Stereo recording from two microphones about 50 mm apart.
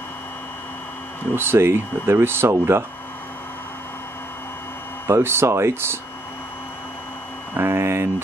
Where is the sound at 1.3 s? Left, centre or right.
Right.